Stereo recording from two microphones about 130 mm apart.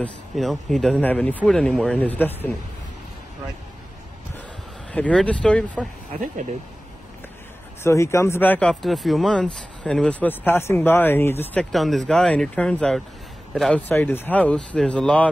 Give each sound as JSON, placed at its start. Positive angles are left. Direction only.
{"t": 0.4, "sound": "speech", "side_deg": 0}
{"t": 2.0, "sound": "speech", "side_deg": 15}
{"t": 4.9, "sound": "speech", "side_deg": 10}
{"t": 6.1, "sound": "speech", "side_deg": -75}
{"t": 7.8, "sound": "speech", "side_deg": 20}
{"t": 11.7, "sound": "speech", "side_deg": 0}